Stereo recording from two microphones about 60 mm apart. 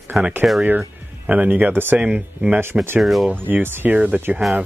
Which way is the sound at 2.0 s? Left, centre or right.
Centre.